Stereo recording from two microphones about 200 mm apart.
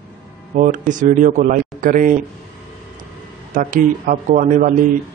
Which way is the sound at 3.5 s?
45° right (ahead or behind).